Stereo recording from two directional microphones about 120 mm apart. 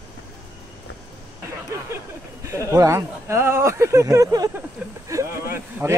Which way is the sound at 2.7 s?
25° right (ahead or behind).